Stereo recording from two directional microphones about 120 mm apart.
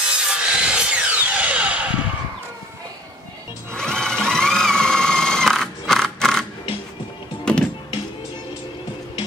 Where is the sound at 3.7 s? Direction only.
5° left (ahead or behind).